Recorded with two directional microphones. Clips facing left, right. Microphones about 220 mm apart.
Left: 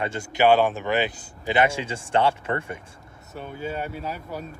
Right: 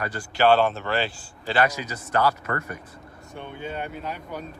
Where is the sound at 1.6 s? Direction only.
30° left (ahead or behind).